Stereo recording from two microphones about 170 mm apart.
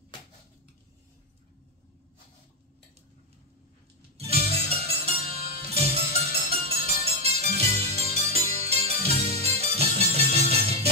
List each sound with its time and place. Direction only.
4.2 s music: 35° right (ahead or behind)